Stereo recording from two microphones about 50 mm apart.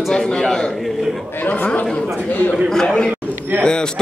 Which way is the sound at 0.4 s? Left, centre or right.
Centre.